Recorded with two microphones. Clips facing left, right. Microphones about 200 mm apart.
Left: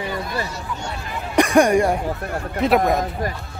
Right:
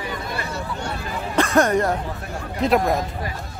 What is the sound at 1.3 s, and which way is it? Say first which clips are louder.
Speech: left 3 dB; 15° left (ahead or behind).